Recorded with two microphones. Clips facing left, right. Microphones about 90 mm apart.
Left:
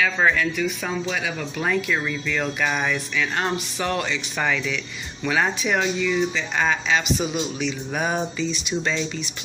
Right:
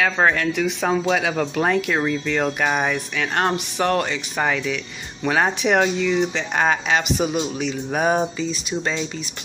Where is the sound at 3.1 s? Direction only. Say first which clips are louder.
Right 3 dB; 55° right (ahead or behind).